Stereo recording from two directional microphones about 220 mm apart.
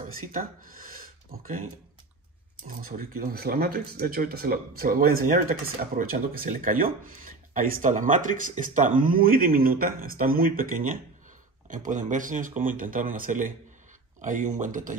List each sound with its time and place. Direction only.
0.0 s speech: 40° right (ahead or behind)
2.7 s speech: 40° right (ahead or behind)